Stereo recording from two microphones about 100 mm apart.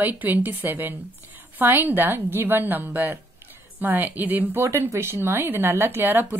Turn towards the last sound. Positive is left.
turn(degrees=-20)  # may be behind; listen again after turning